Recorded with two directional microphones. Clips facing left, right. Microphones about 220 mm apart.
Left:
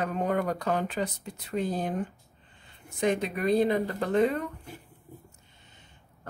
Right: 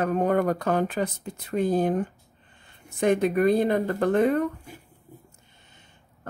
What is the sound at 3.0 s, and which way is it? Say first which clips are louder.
Speech: right 6 dB; 50° right (ahead or behind).